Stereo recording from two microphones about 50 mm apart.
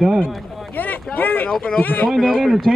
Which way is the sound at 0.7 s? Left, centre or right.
Left.